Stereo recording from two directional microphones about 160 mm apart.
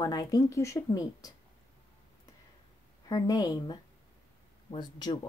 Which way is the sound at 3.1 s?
25° left (ahead or behind).